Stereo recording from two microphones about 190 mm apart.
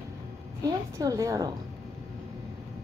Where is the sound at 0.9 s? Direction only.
15° right (ahead or behind).